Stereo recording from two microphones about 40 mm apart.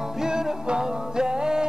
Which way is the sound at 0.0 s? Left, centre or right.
Centre.